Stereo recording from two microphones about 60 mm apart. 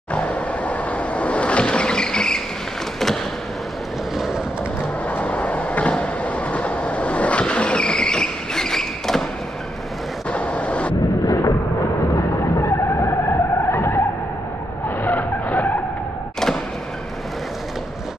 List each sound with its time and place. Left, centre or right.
0.1 s a sound: left
5.0 s train: left; by 9.2 s centre
10.3 s vehicle: left
11.2 s vehicle: left
15.0 s vehicle: left